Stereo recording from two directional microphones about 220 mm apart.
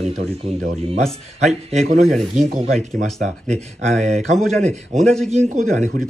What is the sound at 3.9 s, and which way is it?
Speech, centre (ahead or behind).